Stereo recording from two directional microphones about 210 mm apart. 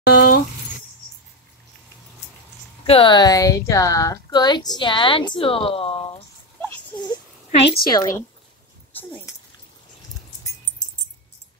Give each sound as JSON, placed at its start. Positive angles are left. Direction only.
{"t": 0.0, "sound": "a sound", "side_deg": 50}
{"t": 2.8, "sound": "speech", "side_deg": 25}
{"t": 7.5, "sound": "a child's voice", "side_deg": 25}